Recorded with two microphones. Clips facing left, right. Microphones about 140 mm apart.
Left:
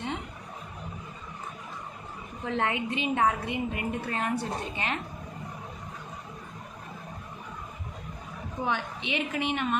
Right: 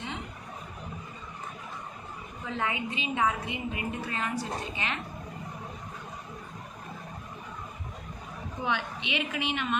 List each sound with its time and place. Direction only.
2.4 s a woman's voice: 60° left (ahead or behind)
8.6 s a woman's voice: 35° left (ahead or behind)